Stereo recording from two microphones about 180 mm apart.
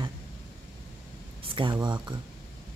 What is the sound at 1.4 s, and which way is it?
Speech, 30° right (ahead or behind).